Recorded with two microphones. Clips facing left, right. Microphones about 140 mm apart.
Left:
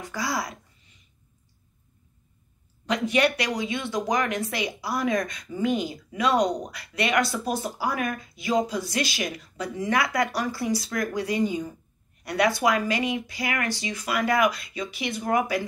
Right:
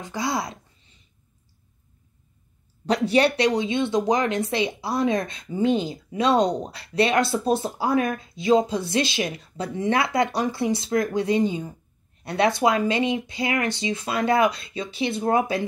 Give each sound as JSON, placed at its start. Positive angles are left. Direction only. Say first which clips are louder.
{"t": 0.0, "sound": "a child's voice", "louder": "right 3 dB", "side_deg": -20}
{"t": 2.9, "sound": "speech", "louder": "right 3 dB", "side_deg": -30}